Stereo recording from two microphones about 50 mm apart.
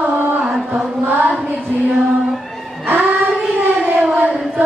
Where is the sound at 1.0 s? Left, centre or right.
Right.